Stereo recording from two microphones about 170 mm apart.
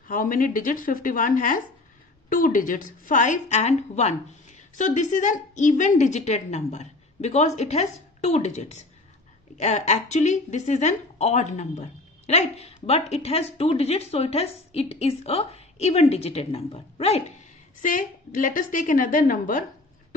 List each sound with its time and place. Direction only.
0.1 s a woman's voice: 55° left (ahead or behind); by 17.2 s 35° left (ahead or behind)
17.8 s a woman's voice: 50° left (ahead or behind)